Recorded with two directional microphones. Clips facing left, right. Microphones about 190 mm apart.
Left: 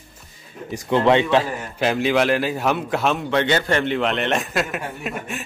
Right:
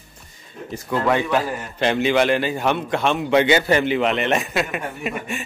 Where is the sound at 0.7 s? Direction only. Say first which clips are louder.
Left 4 dB; 25° left (ahead or behind).